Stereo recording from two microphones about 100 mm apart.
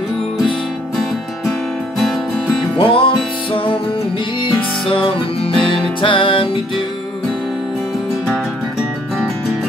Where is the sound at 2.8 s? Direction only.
60° left (ahead or behind).